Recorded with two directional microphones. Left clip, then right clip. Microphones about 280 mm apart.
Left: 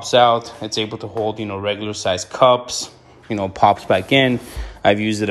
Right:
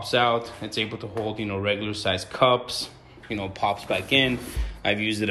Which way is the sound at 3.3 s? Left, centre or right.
Left.